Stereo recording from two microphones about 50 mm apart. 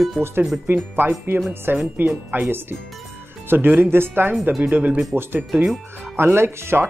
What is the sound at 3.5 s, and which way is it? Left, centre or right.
Speech, right.